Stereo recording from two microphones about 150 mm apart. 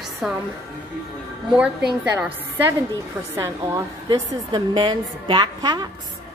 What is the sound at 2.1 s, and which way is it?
A woman's voice, 10° right (ahead or behind).